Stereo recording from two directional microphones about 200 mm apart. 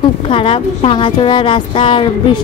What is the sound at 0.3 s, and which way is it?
Speech, 25° left (ahead or behind).